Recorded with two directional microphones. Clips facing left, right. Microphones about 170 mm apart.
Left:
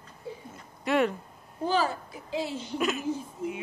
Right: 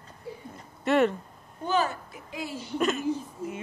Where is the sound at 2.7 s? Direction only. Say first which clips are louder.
Right 3 dB; 5° left (ahead or behind).